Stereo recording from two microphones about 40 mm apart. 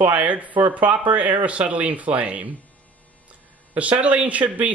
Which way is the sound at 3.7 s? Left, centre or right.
Right.